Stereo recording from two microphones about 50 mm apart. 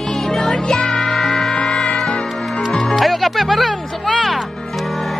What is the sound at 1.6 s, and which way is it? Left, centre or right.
Music, centre.